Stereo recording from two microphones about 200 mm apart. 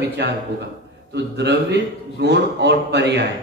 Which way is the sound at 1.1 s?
60° right (ahead or behind).